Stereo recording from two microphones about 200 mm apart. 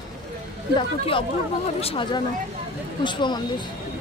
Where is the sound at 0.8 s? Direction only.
25° left (ahead or behind).